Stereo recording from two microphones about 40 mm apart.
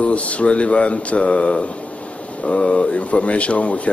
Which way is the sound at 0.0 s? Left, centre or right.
Left.